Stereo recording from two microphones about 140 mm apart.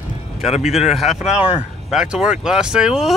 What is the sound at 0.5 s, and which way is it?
Speech, 50° left (ahead or behind).